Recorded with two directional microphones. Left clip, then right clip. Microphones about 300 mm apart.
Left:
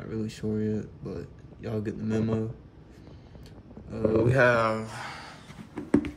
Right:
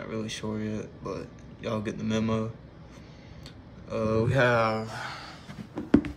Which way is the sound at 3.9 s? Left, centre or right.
Centre.